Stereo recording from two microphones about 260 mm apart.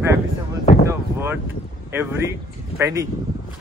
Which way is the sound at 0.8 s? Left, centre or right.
Centre.